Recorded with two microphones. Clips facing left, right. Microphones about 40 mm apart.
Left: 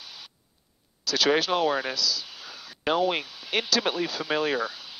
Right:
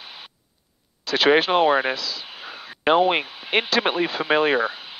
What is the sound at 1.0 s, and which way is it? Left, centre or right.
Speech, right.